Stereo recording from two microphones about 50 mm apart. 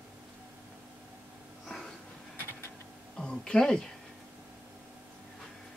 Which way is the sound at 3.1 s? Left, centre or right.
Centre.